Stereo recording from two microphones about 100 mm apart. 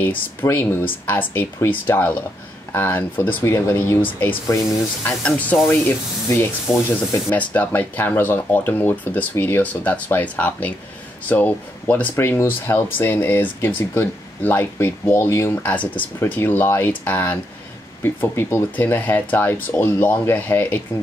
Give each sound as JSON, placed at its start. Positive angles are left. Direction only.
{"t": 0.0, "sound": "speech", "side_deg": 20}
{"t": 6.2, "sound": "speech", "side_deg": 25}
{"t": 7.3, "sound": "speech", "side_deg": 15}